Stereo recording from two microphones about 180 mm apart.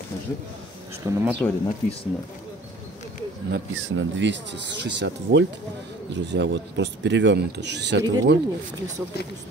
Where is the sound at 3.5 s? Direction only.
85° right.